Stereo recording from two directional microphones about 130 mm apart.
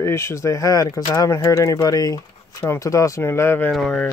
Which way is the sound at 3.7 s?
5° left (ahead or behind).